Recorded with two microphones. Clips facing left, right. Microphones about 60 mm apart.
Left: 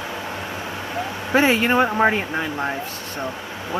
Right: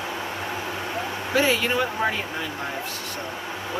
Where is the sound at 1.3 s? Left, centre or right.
Left.